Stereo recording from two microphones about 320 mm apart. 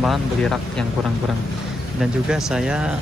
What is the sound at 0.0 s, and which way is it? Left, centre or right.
Speech, centre.